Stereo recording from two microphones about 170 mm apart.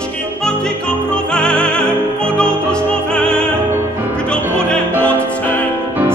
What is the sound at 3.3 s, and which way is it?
Music, 15° right (ahead or behind).